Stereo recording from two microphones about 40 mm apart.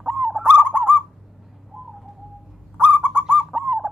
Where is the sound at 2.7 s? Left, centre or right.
Right.